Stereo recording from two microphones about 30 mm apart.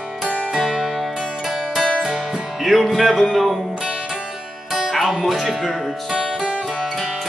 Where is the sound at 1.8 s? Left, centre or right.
Centre.